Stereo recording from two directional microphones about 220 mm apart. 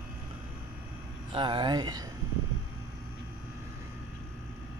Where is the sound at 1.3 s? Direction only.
20° right (ahead or behind).